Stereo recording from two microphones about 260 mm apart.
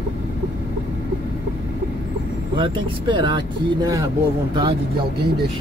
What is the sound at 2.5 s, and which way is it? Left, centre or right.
Speech, centre.